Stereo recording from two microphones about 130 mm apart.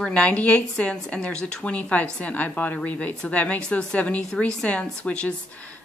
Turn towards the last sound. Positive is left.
turn(degrees=10)  # may be behind; listen again after turning